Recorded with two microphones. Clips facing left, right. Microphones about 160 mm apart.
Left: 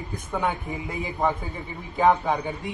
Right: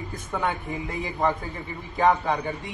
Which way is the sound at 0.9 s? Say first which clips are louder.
Even; 10° left (ahead or behind).